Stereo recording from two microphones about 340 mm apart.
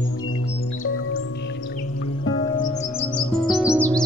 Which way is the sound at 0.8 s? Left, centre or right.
Left.